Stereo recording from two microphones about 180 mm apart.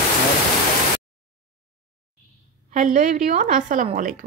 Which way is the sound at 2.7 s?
45° right (ahead or behind).